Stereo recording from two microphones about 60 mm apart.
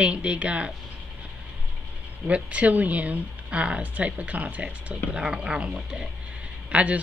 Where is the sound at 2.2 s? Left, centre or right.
Right.